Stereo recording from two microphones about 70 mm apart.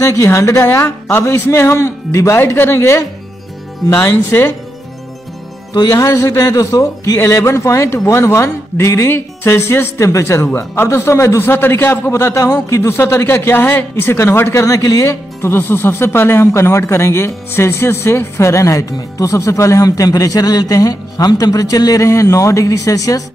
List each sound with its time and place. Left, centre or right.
0.0 s a man's voice: left
5.8 s music: left
6.0 s a man's voice: left
14.8 s a man's voice: left
15.4 s a man's voice: left